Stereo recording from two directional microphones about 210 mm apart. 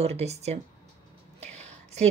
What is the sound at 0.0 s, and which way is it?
A woman's voice, 30° right (ahead or behind).